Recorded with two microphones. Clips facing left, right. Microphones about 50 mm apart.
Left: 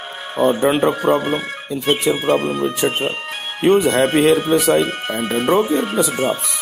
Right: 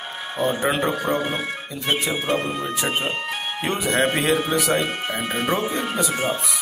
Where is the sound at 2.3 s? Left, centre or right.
Left.